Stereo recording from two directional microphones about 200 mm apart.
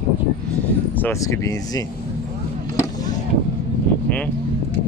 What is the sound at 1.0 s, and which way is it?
Speech, 15° left (ahead or behind).